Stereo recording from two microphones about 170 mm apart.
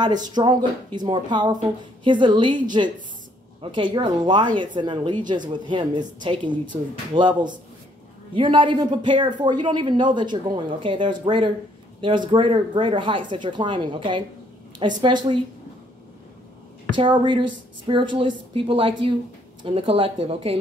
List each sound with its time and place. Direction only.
0.0 s speech: 25° right (ahead or behind)
3.7 s speech: 30° right (ahead or behind)
16.9 s speech: 25° right (ahead or behind)